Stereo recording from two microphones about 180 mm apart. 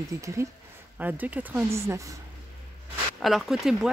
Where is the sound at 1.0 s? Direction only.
10° right (ahead or behind).